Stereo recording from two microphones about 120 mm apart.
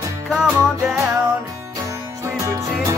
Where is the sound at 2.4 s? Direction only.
25° right (ahead or behind).